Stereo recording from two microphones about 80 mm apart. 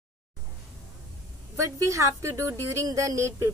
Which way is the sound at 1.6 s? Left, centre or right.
Right.